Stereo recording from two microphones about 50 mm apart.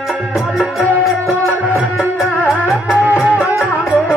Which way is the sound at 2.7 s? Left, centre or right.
Centre.